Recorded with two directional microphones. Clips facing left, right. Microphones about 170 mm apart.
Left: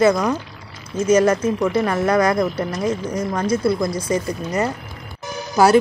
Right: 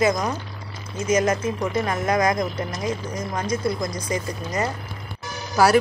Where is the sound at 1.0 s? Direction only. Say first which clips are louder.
Left 5 dB; 35° left (ahead or behind).